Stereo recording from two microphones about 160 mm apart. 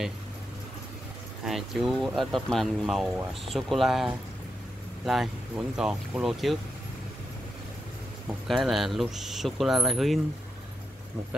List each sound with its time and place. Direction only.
1.4 s speech: centre (ahead or behind)
8.5 s speech: centre (ahead or behind)